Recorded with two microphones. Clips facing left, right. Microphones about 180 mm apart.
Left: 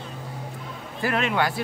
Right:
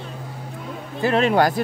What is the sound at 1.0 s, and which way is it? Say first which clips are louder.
Speech: right 6 dB; 25° right (ahead or behind).